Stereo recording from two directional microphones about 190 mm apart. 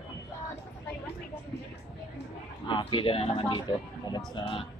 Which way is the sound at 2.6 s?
25° left (ahead or behind).